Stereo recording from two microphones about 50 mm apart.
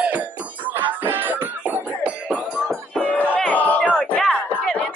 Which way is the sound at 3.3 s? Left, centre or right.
Left.